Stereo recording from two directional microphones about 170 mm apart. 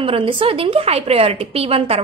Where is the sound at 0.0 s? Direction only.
30° right (ahead or behind).